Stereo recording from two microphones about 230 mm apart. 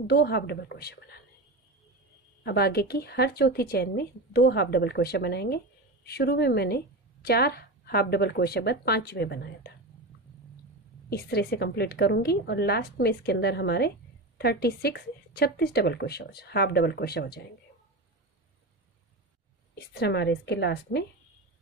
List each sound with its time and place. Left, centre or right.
0.0 s speech: left
2.4 s speech: left
11.1 s speech: left
19.7 s speech: left